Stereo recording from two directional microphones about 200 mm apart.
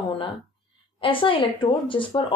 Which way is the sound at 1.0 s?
25° left (ahead or behind).